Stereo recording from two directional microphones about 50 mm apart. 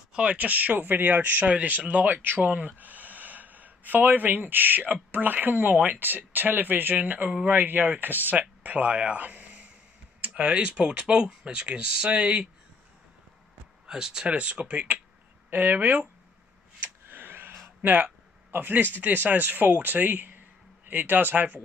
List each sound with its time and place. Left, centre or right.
0.1 s speech: right
7.0 s speech: right
7.4 s speech: right; by 12.4 s centre
13.8 s speech: centre; by 16.1 s right
16.8 s a sound: right
17.8 s speech: right